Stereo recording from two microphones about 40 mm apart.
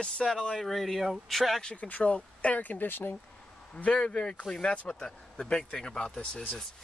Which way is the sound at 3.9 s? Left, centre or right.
Left.